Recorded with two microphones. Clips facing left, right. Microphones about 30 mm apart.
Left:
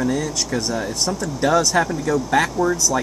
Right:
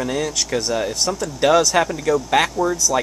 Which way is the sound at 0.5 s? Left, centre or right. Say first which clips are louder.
Right 3 dB; right.